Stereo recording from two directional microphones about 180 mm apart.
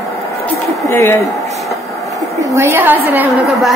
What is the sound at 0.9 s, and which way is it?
Speech, 15° left (ahead or behind).